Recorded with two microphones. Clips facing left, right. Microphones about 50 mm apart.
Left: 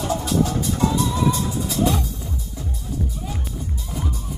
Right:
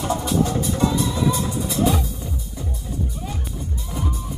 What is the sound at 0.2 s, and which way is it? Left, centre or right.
Music, centre.